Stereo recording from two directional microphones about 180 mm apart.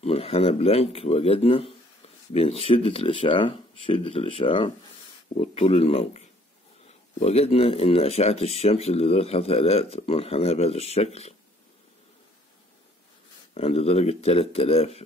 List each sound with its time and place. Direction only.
0.0 s speech: 35° left (ahead or behind)
13.6 s speech: 35° left (ahead or behind)